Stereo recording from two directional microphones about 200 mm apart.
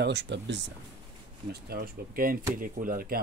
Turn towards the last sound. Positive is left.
turn(degrees=-45)  # may be behind; listen again after turning